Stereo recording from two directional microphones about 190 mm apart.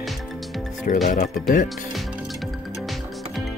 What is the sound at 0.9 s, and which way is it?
Speech, 45° left (ahead or behind).